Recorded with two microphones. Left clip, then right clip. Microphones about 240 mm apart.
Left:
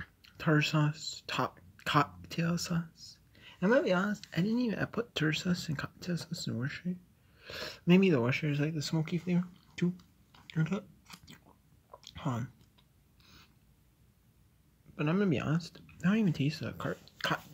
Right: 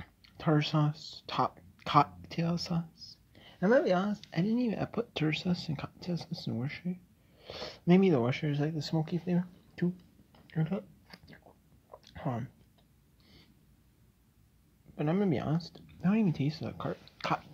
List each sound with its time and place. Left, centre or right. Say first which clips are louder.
0.0 s speech: right 1 dB; centre
10.4 s a sound: even; left
15.0 s speech: even; centre